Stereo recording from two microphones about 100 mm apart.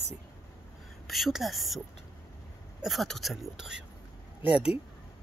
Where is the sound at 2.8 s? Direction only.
Centre (ahead or behind).